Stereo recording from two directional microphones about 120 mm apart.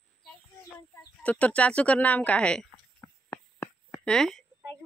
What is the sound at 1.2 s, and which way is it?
Speech, 10° left (ahead or behind).